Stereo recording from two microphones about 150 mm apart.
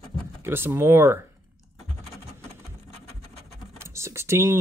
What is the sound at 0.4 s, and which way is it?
Speech, 15° right (ahead or behind).